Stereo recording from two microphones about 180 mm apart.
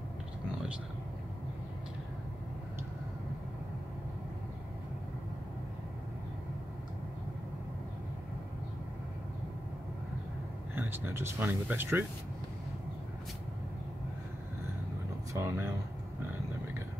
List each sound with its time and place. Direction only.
10.7 s speech: 10° right (ahead or behind)
15.3 s speech: 15° right (ahead or behind)